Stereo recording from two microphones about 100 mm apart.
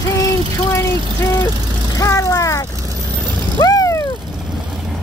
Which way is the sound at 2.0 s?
30° left (ahead or behind).